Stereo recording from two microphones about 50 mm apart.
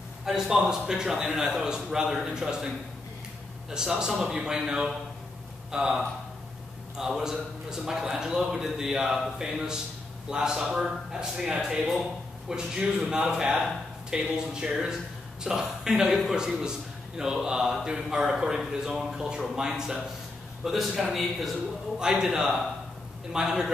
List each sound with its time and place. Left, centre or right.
0.2 s a man's voice: centre
3.7 s a man's voice: centre
21.9 s a man's voice: centre